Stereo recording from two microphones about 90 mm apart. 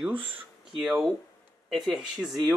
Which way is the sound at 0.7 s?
5° right (ahead or behind).